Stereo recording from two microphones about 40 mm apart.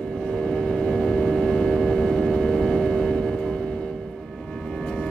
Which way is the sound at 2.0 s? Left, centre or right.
Centre.